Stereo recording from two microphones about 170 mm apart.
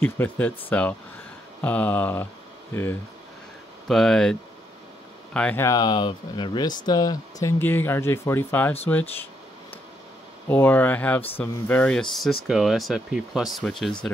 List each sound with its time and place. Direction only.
0.0 s speech: 10° left (ahead or behind)
3.8 s speech: centre (ahead or behind)
5.7 s speech: 25° left (ahead or behind)
10.5 s speech: 10° left (ahead or behind)